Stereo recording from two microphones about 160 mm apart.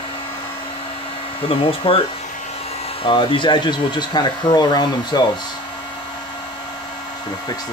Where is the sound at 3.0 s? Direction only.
30° left (ahead or behind).